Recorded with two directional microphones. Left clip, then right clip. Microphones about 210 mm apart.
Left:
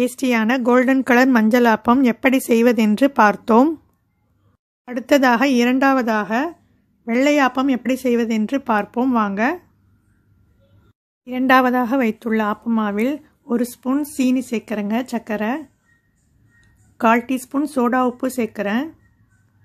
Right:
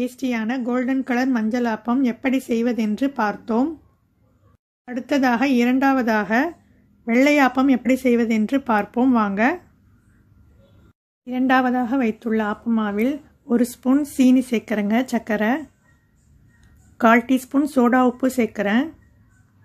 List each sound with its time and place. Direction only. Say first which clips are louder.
0.0 s a woman's voice: left 6 dB; 35° left (ahead or behind)
4.8 s speech: left 5 dB; 25° left (ahead or behind)
6.0 s speech: even; 15° left (ahead or behind)
11.2 s speech: left 4 dB; 20° left (ahead or behind)
16.9 s speech: right 1 dB; 10° left (ahead or behind)